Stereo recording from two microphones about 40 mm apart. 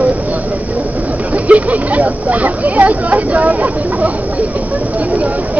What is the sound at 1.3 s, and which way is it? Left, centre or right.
Speech, right.